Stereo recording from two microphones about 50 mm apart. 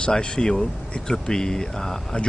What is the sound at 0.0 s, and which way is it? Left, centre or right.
Speech, centre.